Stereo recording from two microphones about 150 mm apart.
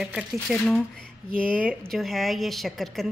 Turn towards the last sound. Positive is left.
turn(degrees=0)  # may be behind; listen again after turning